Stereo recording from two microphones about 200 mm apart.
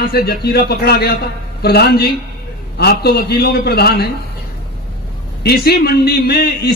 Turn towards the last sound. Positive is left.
turn(degrees=50)  # may be behind; listen again after turning